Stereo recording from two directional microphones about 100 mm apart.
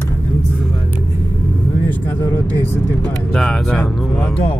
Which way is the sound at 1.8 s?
20° left (ahead or behind).